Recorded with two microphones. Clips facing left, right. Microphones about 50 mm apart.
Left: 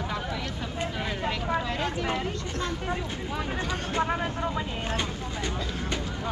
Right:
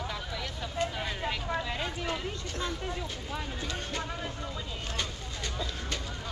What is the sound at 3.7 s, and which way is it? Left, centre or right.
Speech, left.